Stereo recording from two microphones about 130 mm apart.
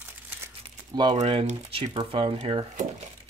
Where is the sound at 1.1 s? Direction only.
60° right (ahead or behind).